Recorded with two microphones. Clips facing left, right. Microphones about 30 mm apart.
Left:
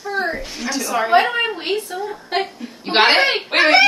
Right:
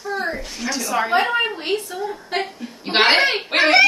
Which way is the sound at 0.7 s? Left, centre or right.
Centre.